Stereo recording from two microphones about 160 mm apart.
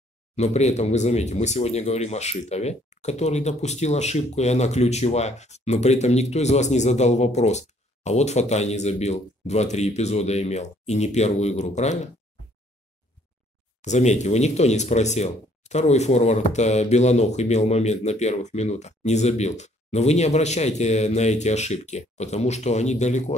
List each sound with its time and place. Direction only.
0.4 s speech: 45° left (ahead or behind)
13.7 s speech: 45° left (ahead or behind)